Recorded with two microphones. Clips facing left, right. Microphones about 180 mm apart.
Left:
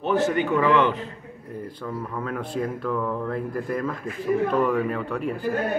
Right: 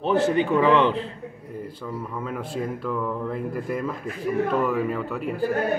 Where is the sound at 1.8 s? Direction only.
5° right (ahead or behind).